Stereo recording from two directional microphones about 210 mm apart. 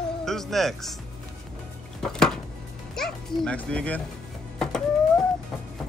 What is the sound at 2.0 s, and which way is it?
Chopping, centre (ahead or behind).